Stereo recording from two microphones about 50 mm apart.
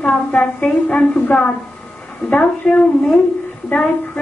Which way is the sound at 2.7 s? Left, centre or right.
Centre.